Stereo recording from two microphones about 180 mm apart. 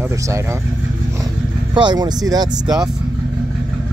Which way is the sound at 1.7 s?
25° right (ahead or behind).